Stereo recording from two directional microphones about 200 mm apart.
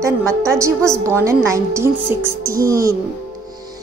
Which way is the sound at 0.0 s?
15° right (ahead or behind).